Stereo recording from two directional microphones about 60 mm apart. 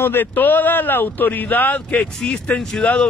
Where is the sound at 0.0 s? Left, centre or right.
Left.